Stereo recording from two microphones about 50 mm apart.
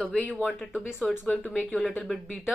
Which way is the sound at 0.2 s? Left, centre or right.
Left.